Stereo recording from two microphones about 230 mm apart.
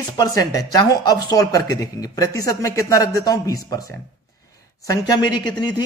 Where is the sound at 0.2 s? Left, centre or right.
Centre.